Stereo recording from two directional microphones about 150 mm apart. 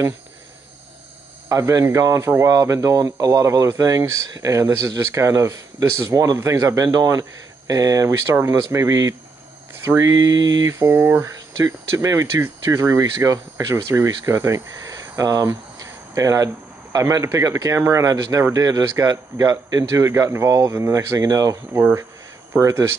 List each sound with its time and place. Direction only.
1.5 s speech: 20° right (ahead or behind)